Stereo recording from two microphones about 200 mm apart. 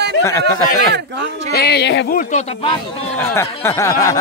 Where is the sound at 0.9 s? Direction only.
60° right (ahead or behind).